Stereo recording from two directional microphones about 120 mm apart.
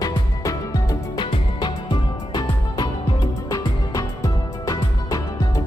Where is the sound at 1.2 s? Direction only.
45° left (ahead or behind).